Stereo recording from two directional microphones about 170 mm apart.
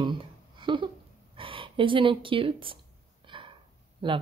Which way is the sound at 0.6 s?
30° right (ahead or behind).